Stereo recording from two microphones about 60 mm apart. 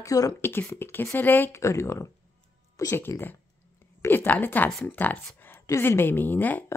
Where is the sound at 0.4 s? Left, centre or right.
Left.